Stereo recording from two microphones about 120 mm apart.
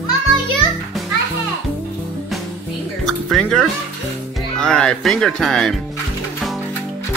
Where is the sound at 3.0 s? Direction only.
5° left (ahead or behind).